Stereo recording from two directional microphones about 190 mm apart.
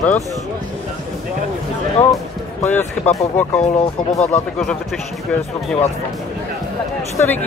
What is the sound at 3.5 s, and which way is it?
Speech, 35° left (ahead or behind).